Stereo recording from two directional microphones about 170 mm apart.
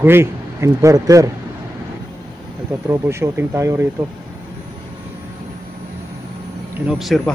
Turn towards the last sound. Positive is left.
turn(degrees=-5)  # may be behind; listen again after turning